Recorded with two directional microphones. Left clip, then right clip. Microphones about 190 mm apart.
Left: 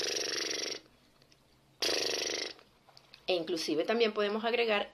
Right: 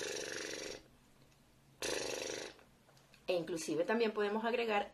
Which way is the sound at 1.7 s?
15° right (ahead or behind).